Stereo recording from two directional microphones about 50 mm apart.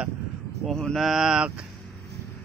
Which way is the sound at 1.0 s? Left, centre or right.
Centre.